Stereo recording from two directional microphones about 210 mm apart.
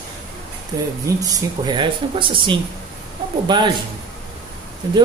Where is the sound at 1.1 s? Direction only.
15° right (ahead or behind).